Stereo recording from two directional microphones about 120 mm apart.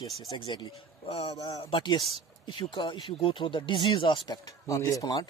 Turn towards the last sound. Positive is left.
turn(degrees=30)  # may be behind; listen again after turning